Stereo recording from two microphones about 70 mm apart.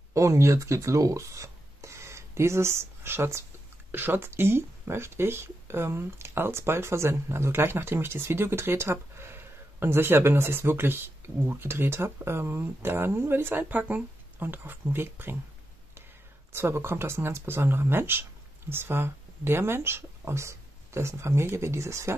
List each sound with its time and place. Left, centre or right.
0.1 s speech: right
16.5 s speech: right